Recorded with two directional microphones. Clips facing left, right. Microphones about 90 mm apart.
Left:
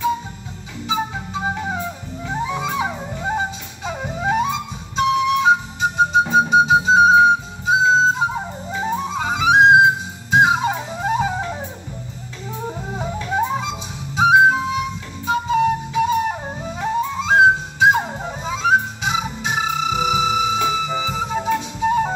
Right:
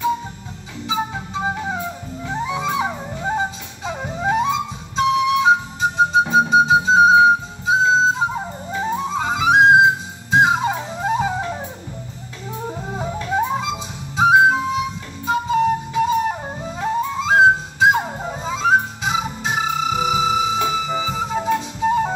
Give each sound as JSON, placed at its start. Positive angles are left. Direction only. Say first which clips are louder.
{"t": 0.8, "sound": "music", "louder": "even", "side_deg": 0}